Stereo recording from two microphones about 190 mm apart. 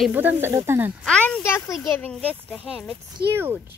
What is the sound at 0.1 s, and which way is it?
Speech, 10° right (ahead or behind).